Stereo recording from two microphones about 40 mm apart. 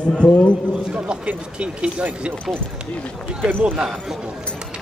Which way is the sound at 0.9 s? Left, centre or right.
Right.